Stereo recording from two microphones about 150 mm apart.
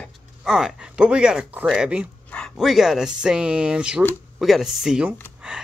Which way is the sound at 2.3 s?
5° left (ahead or behind).